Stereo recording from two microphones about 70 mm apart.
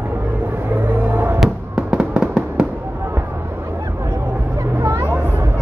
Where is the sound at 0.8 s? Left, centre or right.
Right.